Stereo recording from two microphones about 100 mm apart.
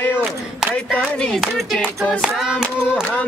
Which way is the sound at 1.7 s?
10° left (ahead or behind).